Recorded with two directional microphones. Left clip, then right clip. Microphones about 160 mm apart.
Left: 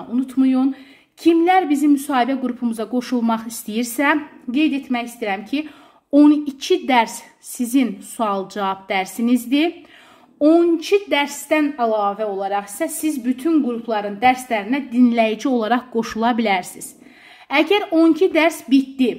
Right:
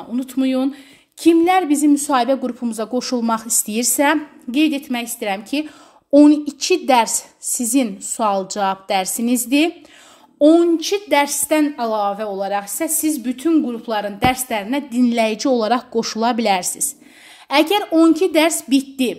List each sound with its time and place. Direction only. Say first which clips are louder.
0.1 s a woman's voice: left 1 dB; 40° right (ahead or behind)
6.1 s a woman's voice: right 2 dB; 20° right (ahead or behind)